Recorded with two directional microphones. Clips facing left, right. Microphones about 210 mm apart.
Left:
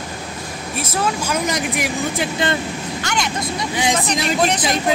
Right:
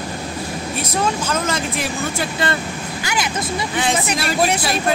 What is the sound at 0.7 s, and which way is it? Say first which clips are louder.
Speech: even; 10° left (ahead or behind).